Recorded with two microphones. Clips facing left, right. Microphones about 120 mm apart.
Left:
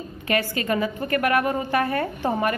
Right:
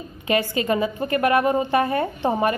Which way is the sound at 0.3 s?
20° right (ahead or behind).